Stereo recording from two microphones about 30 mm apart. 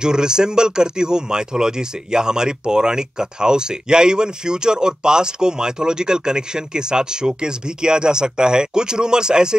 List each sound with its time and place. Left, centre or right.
0.0 s speech: right